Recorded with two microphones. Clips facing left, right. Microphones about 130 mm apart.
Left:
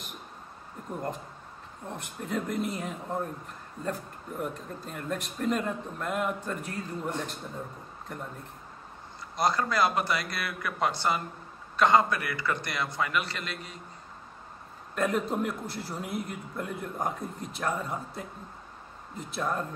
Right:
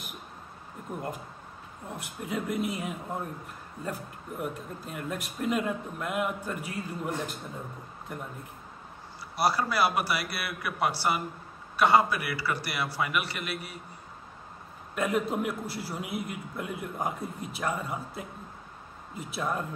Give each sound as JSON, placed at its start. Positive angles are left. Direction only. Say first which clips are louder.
{"t": 1.9, "sound": "a man's voice", "louder": "left 1 dB", "side_deg": -5}
{"t": 4.4, "sound": "a man's voice", "louder": "even", "side_deg": -5}
{"t": 9.4, "sound": "a man's voice", "louder": "even", "side_deg": -10}
{"t": 15.0, "sound": "a man's voice", "louder": "even", "side_deg": -5}